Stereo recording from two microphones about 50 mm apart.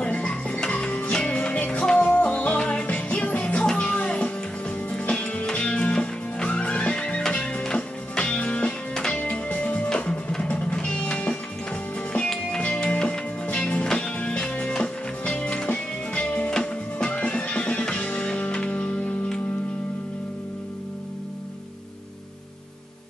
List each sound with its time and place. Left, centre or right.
0.0 s music: left
12.3 s music: centre